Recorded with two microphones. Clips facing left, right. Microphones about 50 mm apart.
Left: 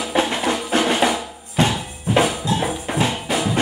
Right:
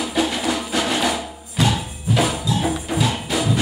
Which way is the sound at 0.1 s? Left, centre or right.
Left.